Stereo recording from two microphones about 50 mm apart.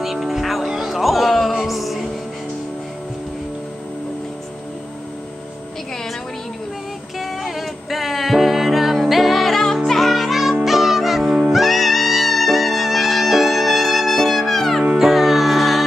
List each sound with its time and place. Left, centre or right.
0.0 s music: centre
7.2 s music: centre